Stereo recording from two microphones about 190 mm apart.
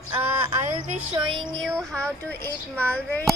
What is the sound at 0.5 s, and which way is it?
Speech, 30° right (ahead or behind).